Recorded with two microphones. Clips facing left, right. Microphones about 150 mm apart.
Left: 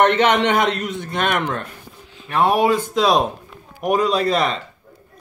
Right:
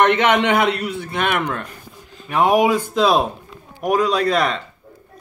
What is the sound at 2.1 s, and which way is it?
A man's voice, 10° right (ahead or behind).